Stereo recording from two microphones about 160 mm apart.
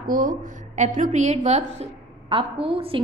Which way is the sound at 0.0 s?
60° right (ahead or behind).